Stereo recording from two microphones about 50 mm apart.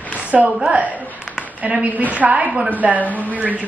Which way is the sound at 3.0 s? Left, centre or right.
Left.